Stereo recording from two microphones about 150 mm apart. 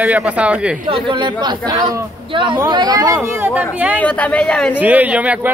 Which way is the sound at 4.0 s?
10° left (ahead or behind).